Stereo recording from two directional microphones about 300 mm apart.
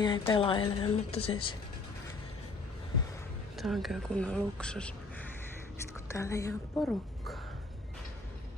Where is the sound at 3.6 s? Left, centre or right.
Centre.